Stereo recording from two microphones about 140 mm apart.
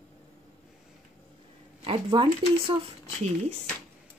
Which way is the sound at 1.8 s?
40° right (ahead or behind).